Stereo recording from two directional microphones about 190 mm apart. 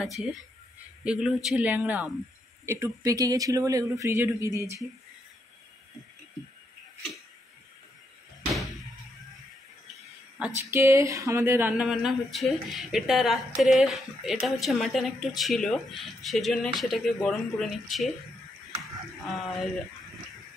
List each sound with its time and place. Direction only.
0.0 s speech: centre (ahead or behind)
2.6 s speech: 15° right (ahead or behind)
10.4 s speech: 15° right (ahead or behind)
18.8 s a sound: centre (ahead or behind)